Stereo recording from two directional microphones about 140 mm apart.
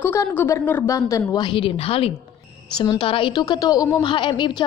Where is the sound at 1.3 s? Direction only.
35° left (ahead or behind).